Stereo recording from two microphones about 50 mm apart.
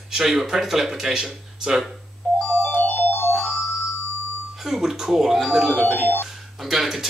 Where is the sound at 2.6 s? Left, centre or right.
Left.